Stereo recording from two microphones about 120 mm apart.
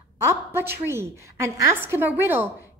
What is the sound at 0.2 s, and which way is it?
A woman's voice, 20° right (ahead or behind).